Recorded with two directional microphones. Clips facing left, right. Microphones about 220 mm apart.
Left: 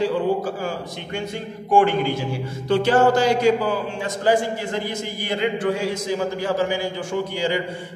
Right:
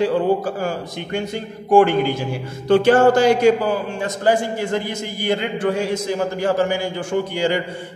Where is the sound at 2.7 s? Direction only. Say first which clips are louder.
Right 4 dB; 50° right (ahead or behind).